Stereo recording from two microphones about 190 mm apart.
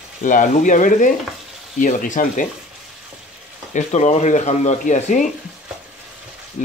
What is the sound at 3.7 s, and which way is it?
Speech, 40° left (ahead or behind).